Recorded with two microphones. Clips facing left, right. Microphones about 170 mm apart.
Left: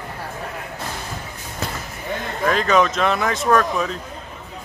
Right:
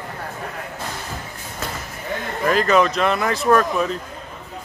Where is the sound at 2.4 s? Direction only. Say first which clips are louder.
Right 1 dB; centre (ahead or behind).